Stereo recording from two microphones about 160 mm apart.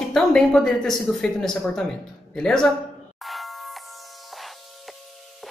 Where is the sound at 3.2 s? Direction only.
Centre (ahead or behind).